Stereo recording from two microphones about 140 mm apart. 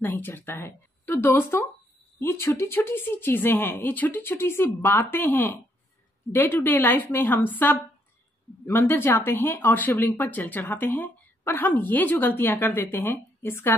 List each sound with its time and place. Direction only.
0.0 s speech: 15° left (ahead or behind)